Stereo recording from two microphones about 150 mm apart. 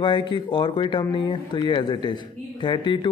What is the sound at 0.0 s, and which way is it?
A man's voice, 30° left (ahead or behind).